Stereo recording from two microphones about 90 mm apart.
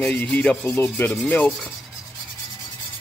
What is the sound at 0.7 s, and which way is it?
Speech, 20° left (ahead or behind).